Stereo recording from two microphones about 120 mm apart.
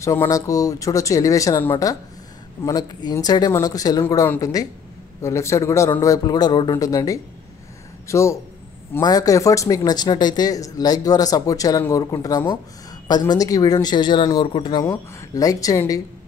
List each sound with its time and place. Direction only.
0.0 s speech: 25° left (ahead or behind); by 14.9 s 45° left (ahead or behind)
14.9 s speech: 25° left (ahead or behind)